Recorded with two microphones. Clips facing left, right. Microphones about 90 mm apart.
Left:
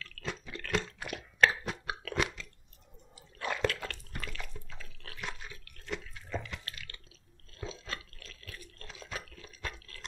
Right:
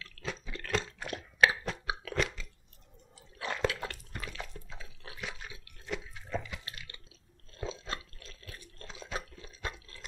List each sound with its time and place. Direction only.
0.0 s drip: 5° right (ahead or behind)
0.6 s a sound: 5° right (ahead or behind)
1.4 s chewing: centre (ahead or behind)
3.2 s drip: centre (ahead or behind)
6.9 s a sound: 20° right (ahead or behind)
9.1 s water: 25° right (ahead or behind)